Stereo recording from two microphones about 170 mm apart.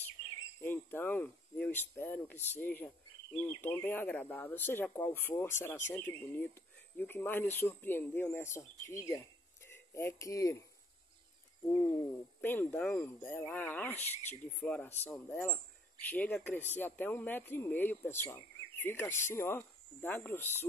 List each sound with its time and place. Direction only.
0.6 s speech: 10° left (ahead or behind)
12.4 s speech: 10° left (ahead or behind)